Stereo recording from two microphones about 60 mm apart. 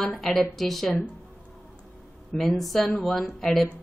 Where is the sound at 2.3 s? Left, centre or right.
Centre.